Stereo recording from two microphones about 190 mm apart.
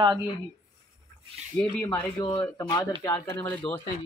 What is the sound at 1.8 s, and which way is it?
Speech, 10° left (ahead or behind).